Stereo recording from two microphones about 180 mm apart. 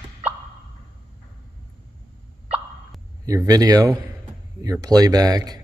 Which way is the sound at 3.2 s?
20° right (ahead or behind).